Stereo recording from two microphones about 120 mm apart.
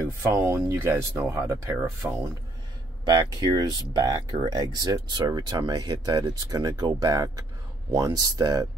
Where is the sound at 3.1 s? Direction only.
30° right (ahead or behind).